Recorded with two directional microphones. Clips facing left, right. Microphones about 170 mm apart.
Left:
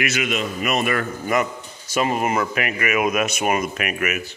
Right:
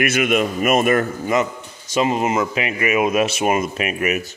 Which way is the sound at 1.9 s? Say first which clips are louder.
Right 2 dB; 25° right (ahead or behind).